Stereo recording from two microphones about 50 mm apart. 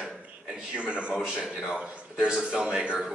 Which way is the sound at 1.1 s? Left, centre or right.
Centre.